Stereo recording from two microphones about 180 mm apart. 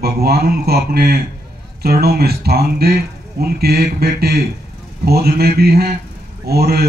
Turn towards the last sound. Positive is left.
turn(degrees=-60)  # may be behind; listen again after turning